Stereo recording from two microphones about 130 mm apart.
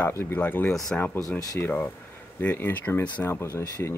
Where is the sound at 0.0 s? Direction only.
20° left (ahead or behind).